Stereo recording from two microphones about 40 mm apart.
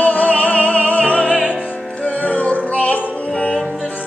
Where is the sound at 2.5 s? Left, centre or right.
Left.